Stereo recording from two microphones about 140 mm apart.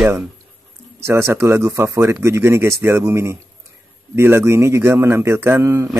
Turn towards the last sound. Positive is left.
turn(degrees=-20)  # may be behind; listen again after turning